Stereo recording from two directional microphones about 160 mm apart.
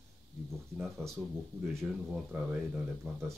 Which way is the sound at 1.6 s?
10° right (ahead or behind).